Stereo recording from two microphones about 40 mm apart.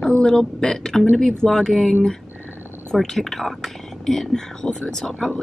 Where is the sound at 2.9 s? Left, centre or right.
Centre.